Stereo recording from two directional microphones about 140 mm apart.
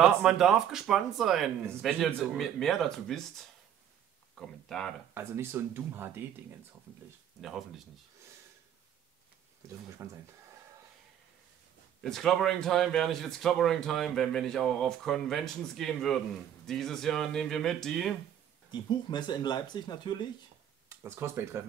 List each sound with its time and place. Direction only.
0.0 s a man's voice: 5° right (ahead or behind)
5.1 s speech: 20° right (ahead or behind)
10.0 s speech: 15° right (ahead or behind)
12.0 s a man's voice: 5° left (ahead or behind)
18.7 s speech: 30° left (ahead or behind)
20.9 s speech: 20° right (ahead or behind)